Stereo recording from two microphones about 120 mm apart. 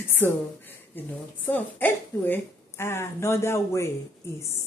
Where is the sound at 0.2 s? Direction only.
20° left (ahead or behind).